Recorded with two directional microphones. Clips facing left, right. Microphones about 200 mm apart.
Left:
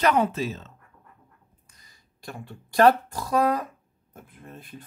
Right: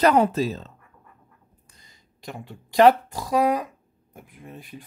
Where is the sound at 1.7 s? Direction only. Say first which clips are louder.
Right 2 dB; 20° right (ahead or behind).